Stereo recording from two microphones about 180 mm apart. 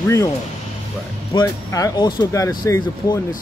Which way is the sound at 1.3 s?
20° left (ahead or behind).